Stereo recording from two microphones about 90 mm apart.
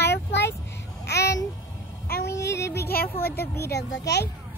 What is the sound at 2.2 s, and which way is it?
Speech, 35° left (ahead or behind).